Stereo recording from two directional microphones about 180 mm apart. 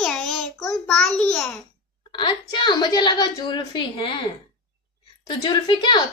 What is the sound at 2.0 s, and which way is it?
A woman's voice, 25° left (ahead or behind).